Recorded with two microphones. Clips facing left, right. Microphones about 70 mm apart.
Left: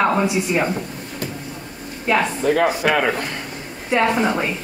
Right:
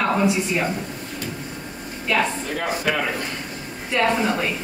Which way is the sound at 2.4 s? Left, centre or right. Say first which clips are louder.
Left 7 dB; left.